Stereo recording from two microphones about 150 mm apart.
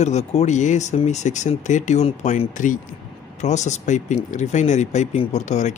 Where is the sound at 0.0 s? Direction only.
50° left (ahead or behind).